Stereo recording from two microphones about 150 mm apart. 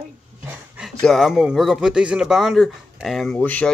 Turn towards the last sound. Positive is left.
turn(degrees=10)  # may be behind; listen again after turning